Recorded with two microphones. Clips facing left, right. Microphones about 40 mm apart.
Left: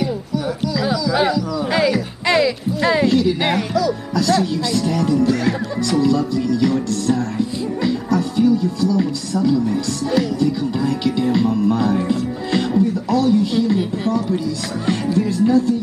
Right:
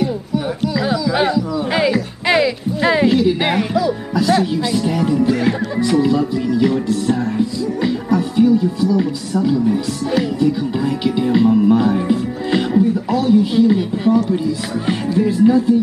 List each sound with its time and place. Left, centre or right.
0.7 s music: centre
15.1 s music: centre